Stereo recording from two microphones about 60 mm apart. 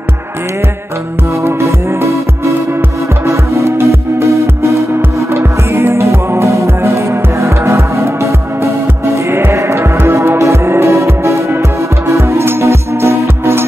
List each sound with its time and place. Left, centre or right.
1.4 s music: right
5.3 s music: right